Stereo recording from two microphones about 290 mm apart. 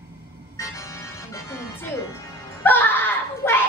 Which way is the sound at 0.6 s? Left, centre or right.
Centre.